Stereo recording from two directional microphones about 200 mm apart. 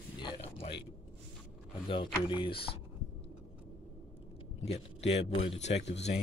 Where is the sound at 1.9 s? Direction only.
25° left (ahead or behind).